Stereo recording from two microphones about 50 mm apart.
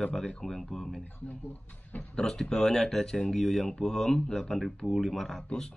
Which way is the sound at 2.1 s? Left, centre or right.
Centre.